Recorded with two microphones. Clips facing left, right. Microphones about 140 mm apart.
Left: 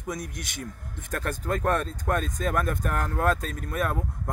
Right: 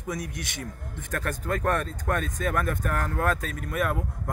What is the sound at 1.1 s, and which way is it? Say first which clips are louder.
Speech: even; 20° left (ahead or behind).